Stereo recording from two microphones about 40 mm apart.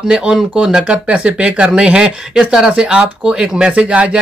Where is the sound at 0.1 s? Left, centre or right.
Right.